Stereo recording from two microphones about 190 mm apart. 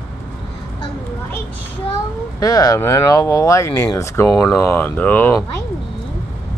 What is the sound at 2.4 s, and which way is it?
Speech, 20° left (ahead or behind).